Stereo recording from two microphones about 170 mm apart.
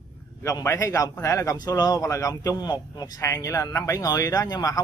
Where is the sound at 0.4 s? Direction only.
15° left (ahead or behind).